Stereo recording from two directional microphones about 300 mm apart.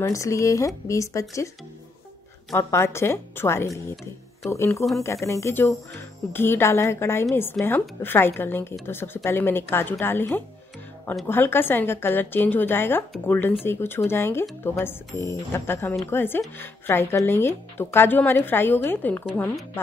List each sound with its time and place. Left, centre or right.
0.0 s speech: centre
2.5 s speech: centre